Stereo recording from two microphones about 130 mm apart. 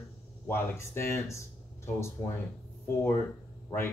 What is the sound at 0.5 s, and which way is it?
Speech, 20° left (ahead or behind).